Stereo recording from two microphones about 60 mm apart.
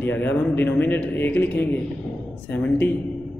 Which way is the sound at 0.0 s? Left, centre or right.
Left.